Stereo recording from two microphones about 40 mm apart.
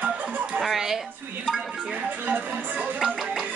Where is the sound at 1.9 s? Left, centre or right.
Right.